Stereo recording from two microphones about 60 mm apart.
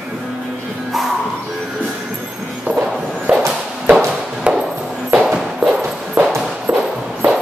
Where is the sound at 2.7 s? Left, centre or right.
Right.